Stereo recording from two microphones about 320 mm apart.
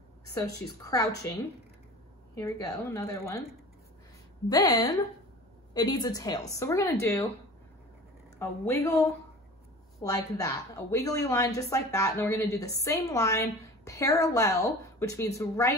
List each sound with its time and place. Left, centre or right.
0.3 s a woman's voice: centre
2.3 s a woman's voice: centre
4.5 s a woman's voice: centre
8.4 s a woman's voice: centre